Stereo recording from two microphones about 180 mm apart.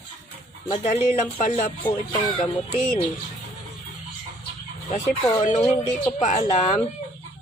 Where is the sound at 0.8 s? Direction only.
45° left (ahead or behind).